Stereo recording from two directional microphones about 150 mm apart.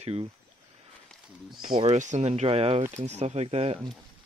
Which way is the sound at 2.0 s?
50° right (ahead or behind).